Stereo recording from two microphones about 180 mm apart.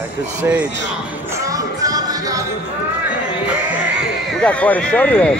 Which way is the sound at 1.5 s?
20° right (ahead or behind).